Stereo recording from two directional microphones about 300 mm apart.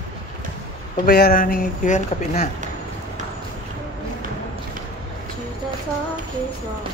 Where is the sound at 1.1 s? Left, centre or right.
Left.